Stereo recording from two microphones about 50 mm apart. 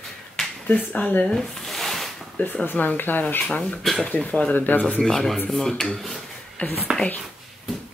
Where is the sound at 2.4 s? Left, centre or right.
Left.